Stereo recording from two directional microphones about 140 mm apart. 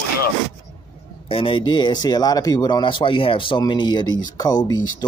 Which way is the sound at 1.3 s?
40° left (ahead or behind).